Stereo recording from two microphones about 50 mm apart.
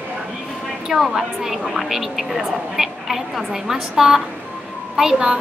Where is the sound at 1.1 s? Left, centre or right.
Centre.